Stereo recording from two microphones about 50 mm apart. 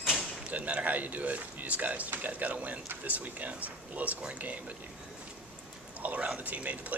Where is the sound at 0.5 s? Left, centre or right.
Right.